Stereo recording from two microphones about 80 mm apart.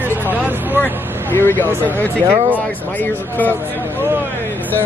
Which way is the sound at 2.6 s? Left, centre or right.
Left.